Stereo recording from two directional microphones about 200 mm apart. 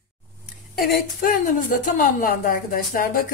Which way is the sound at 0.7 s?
45° left (ahead or behind).